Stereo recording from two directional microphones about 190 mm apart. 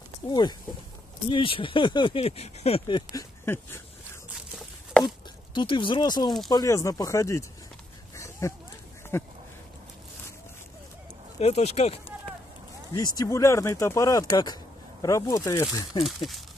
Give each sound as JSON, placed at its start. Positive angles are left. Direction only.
{"t": 0.3, "sound": "speech", "side_deg": 20}
{"t": 3.1, "sound": "speech", "side_deg": 15}
{"t": 4.3, "sound": "a sound", "side_deg": 0}
{"t": 5.5, "sound": "speech", "side_deg": 25}
{"t": 8.2, "sound": "a sound", "side_deg": 15}
{"t": 11.3, "sound": "speech", "side_deg": 35}
{"t": 12.9, "sound": "speech", "side_deg": 20}
{"t": 16.0, "sound": "speech", "side_deg": 0}